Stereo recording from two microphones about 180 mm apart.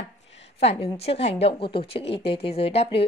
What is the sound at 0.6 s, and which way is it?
Speech, 35° left (ahead or behind).